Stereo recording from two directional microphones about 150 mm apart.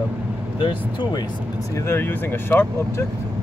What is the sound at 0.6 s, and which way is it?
Speech, 30° left (ahead or behind).